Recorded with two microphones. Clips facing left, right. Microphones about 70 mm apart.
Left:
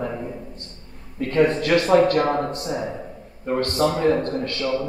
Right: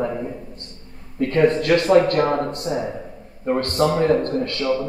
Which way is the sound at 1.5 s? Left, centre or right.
Left.